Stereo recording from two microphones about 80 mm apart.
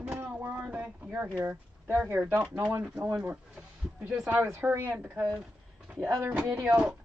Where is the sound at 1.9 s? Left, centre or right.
Right.